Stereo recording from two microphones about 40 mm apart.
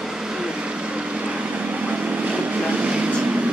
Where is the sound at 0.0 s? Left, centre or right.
Centre.